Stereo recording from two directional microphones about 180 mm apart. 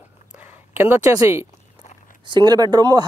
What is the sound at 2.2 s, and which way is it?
Speech, 25° right (ahead or behind).